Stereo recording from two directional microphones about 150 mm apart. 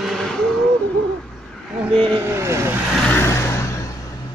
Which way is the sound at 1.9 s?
35° right (ahead or behind).